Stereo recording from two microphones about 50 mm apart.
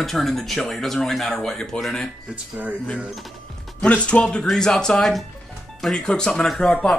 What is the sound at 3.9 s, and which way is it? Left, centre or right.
Speech, left.